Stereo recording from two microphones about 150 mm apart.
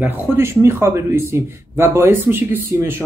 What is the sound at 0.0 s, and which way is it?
A man's voice, 15° right (ahead or behind).